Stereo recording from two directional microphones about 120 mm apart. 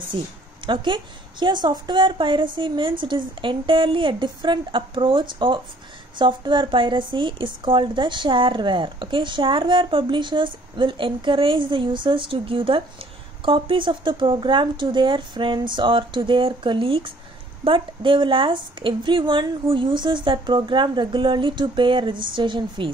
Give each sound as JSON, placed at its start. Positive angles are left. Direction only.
{"t": 0.1, "sound": "a woman's voice", "side_deg": -45}